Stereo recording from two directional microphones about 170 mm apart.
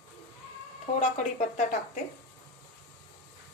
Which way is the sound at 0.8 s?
45° left (ahead or behind).